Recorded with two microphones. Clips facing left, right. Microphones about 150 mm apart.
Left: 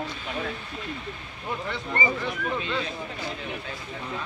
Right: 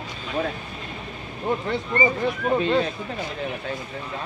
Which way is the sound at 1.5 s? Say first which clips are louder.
Right 6 dB; 40° right (ahead or behind).